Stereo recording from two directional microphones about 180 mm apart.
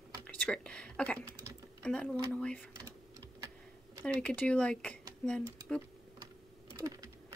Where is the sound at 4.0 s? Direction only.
5° left (ahead or behind).